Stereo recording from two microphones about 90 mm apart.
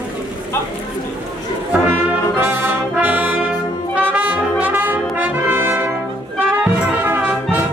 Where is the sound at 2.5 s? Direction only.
20° right (ahead or behind).